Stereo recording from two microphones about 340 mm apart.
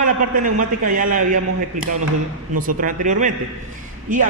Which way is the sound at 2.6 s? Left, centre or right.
Right.